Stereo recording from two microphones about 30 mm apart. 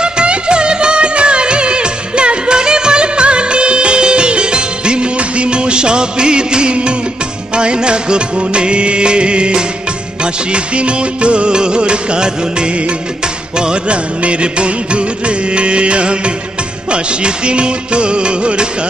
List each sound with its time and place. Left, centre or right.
0.0 s music of bollywood: right
13.8 s music of bollywood: right